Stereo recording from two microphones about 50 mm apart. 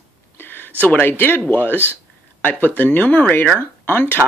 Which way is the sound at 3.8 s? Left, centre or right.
Left.